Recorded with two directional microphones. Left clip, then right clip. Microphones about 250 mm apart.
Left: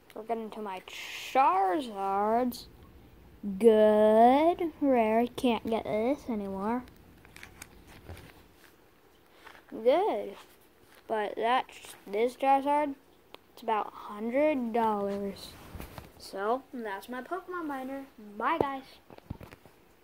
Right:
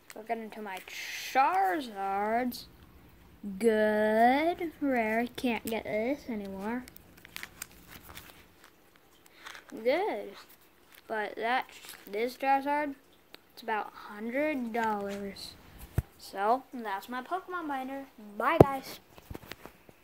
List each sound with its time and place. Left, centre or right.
0.3 s speech: centre
9.8 s speech: centre
16.3 s speech: right
17.1 s speech: centre
18.4 s speech: right